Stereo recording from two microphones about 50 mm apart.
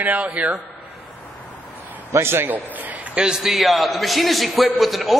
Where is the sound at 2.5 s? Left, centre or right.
Right.